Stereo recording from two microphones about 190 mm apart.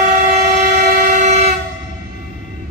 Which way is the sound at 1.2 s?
40° right (ahead or behind).